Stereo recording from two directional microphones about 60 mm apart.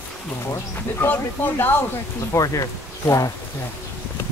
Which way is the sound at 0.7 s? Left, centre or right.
Left.